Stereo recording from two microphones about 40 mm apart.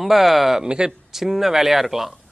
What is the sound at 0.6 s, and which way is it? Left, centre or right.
Speech, right.